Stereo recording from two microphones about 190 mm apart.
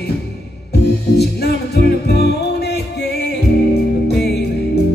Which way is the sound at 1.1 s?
60° left (ahead or behind).